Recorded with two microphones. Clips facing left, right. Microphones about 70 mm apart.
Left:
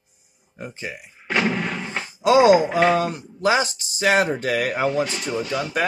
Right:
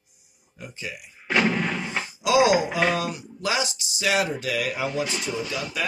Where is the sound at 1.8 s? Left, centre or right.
Left.